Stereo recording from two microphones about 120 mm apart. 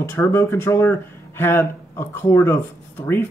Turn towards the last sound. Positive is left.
turn(degrees=20)  # may be behind; listen again after turning